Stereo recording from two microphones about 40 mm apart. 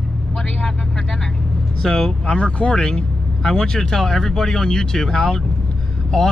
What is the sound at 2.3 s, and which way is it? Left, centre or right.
Speech, left.